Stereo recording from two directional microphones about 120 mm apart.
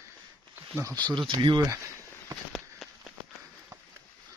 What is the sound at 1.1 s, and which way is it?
Speech, 45° right (ahead or behind).